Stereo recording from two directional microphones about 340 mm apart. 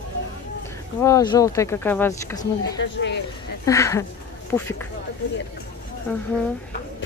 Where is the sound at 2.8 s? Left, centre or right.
Left.